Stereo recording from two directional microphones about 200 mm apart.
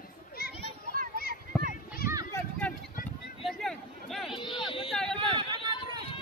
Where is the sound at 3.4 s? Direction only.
Centre (ahead or behind).